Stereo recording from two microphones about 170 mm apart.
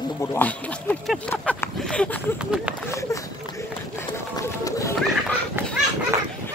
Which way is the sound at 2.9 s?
20° left (ahead or behind).